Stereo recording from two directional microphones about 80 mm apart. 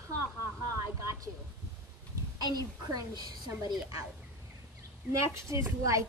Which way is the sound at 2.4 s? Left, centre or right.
Right.